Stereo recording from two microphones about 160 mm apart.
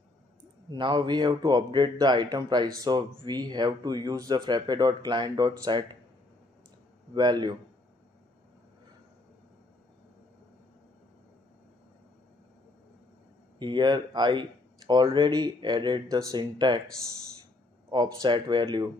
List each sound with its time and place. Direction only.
0.7 s a man's voice: 25° right (ahead or behind)
7.2 s a man's voice: 25° right (ahead or behind)
13.6 s a man's voice: 30° right (ahead or behind)
18.2 s a man's voice: 30° right (ahead or behind)